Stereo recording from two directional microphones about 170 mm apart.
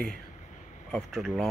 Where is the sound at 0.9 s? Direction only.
Centre (ahead or behind).